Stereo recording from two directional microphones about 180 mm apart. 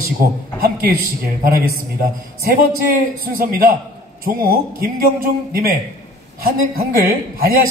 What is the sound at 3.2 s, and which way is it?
A man's voice, 50° right (ahead or behind).